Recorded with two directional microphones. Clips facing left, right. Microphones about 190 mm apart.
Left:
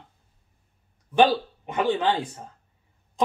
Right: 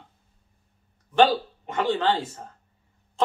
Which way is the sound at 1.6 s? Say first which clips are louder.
Even; 15° left (ahead or behind).